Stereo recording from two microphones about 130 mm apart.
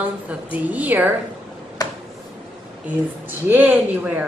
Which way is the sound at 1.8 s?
30° left (ahead or behind).